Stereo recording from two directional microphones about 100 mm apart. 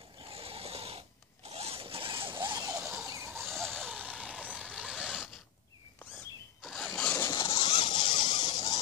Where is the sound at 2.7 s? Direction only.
25° right (ahead or behind).